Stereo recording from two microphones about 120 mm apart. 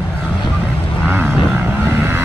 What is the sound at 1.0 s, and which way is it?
Vehicle, 15° right (ahead or behind).